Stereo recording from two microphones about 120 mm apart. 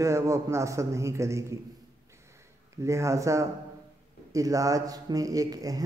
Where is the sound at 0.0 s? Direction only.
25° right (ahead or behind).